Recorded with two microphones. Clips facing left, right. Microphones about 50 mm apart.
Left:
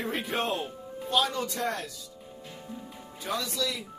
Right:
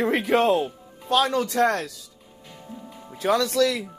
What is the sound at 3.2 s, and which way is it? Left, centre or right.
Speech, right.